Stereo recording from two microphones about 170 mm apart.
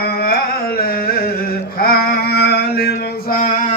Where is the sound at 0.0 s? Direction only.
65° left (ahead or behind).